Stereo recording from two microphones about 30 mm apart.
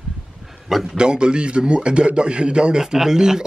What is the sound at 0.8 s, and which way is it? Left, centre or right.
A man's voice, right.